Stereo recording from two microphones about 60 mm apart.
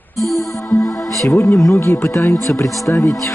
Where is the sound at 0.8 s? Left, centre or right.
Centre.